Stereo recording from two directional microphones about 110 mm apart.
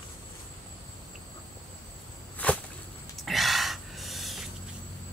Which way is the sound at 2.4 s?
10° left (ahead or behind).